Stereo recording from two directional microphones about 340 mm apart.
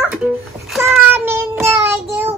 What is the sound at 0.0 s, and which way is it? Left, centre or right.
Music, centre.